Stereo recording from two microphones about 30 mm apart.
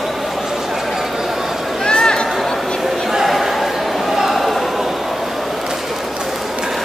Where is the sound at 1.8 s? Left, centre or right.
Left.